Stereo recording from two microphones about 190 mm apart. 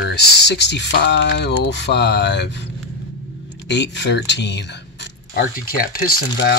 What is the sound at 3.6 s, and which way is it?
Speech, 65° left (ahead or behind).